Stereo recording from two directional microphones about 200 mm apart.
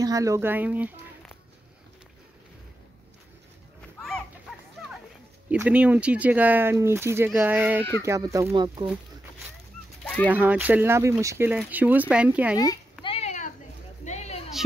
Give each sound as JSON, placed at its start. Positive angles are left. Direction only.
{"t": 0.0, "sound": "speech", "side_deg": -15}
{"t": 5.5, "sound": "speech", "side_deg": -5}
{"t": 10.2, "sound": "speech", "side_deg": -10}
{"t": 13.0, "sound": "a sound", "side_deg": 30}